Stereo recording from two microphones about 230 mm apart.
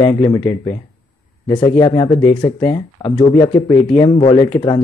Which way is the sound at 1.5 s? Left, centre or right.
Centre.